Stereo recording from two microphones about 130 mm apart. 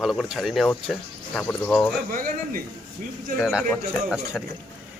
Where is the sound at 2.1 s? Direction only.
90° right.